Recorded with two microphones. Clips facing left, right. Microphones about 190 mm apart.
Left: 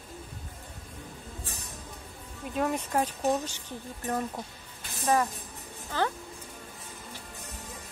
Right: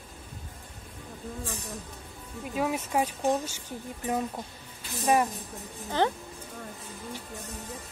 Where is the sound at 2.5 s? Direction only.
5° right (ahead or behind).